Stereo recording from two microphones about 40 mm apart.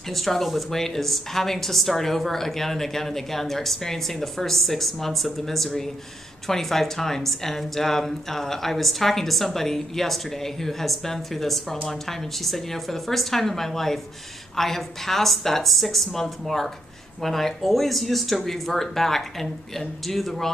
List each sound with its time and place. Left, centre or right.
0.1 s a woman's voice: centre